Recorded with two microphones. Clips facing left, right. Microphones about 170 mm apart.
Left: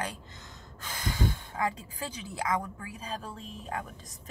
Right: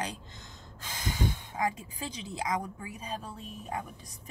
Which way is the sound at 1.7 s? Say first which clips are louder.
Left 1 dB; 20° right (ahead or behind).